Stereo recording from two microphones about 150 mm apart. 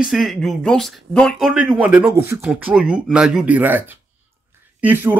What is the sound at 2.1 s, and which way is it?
Speech, 20° right (ahead or behind).